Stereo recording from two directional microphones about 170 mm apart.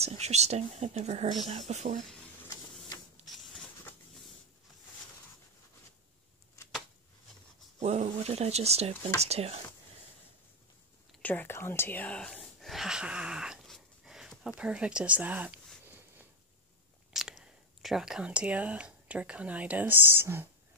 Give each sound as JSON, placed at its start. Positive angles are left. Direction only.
{"t": 0.0, "sound": "speech", "side_deg": -40}
{"t": 3.3, "sound": "patter", "side_deg": 0}
{"t": 7.8, "sound": "speech", "side_deg": -40}
{"t": 11.1, "sound": "whispering", "side_deg": 10}
{"t": 14.6, "sound": "speech", "side_deg": -5}
{"t": 17.1, "sound": "speech", "side_deg": 0}